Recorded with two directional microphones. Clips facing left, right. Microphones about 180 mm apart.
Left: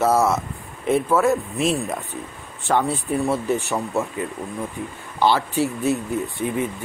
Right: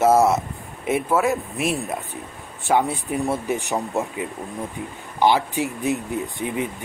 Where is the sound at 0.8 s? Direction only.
10° right (ahead or behind).